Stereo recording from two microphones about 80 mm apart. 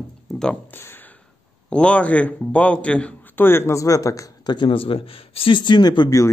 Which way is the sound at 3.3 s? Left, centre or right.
Left.